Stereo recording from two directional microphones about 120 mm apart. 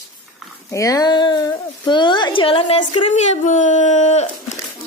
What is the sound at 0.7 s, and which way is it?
Speech, 25° left (ahead or behind).